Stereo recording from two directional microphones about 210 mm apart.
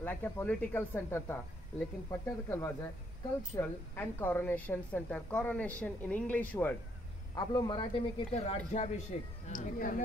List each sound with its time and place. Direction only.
0.0 s a woman's voice: 10° left (ahead or behind)
7.3 s a man's voice: 20° left (ahead or behind); by 10.0 s 40° left (ahead or behind)